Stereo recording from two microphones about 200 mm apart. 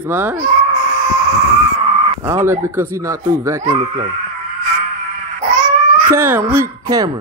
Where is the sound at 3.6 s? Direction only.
30° right (ahead or behind).